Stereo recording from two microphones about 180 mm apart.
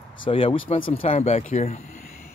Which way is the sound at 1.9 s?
40° left (ahead or behind).